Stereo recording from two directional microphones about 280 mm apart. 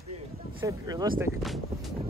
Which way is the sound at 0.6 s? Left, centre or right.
Centre.